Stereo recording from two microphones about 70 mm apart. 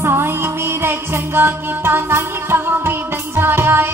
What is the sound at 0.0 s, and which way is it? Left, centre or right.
Music, right.